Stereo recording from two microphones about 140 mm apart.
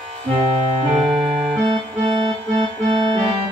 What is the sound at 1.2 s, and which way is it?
Music, 40° right (ahead or behind).